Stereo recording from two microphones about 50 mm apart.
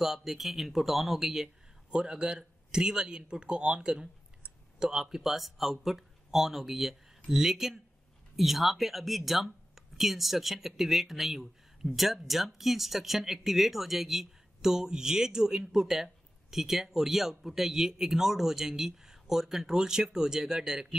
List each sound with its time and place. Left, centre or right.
0.0 s speech: centre